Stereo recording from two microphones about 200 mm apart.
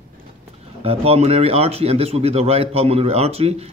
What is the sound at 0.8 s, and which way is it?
Speech, 30° right (ahead or behind).